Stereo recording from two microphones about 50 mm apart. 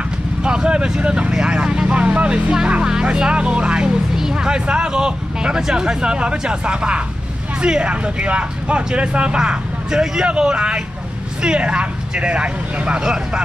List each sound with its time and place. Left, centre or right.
0.4 s speech: centre